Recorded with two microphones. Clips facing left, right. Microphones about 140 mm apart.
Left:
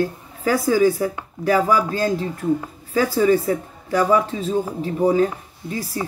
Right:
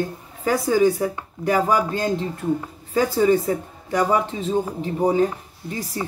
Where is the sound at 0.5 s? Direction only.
30° right (ahead or behind).